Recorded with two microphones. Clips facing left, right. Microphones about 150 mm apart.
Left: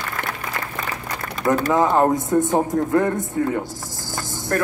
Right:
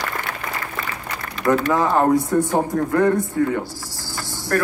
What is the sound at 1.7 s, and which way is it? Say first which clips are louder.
A man's voice: left 1 dB; 20° left (ahead or behind).